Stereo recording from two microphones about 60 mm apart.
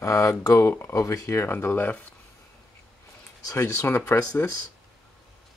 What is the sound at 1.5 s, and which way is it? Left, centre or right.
Speech, left.